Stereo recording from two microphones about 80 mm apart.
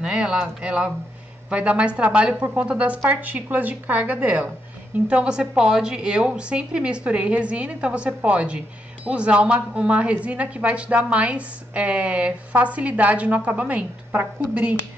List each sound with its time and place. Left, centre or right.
0.0 s a woman's voice: centre